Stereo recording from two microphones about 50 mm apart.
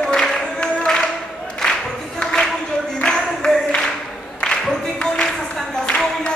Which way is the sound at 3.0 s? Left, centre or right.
Centre.